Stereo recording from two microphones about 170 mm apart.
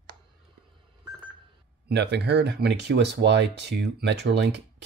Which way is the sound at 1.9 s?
75° right (ahead or behind).